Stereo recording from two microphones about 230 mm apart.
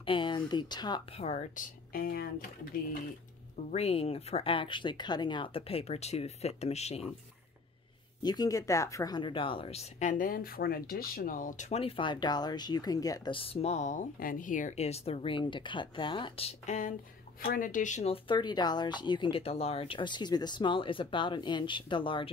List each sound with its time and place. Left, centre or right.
0.0 s speech: left
3.7 s speech: left
8.2 s speech: centre